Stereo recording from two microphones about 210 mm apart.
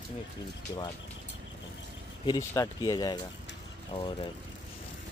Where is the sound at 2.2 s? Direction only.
15° left (ahead or behind).